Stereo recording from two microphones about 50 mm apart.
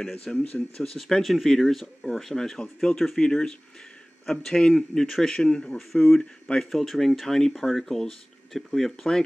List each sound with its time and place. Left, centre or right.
0.0 s speech: centre
0.9 s speech: centre
5.3 s speech: centre
6.7 s speech: centre